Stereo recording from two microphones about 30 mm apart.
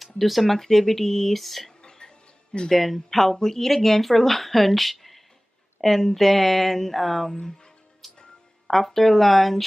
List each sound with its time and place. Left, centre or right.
0.0 s speech: centre
1.8 s a sound: left
2.7 s speech: centre
7.4 s speech: left
8.0 s music: centre
8.6 s speech: centre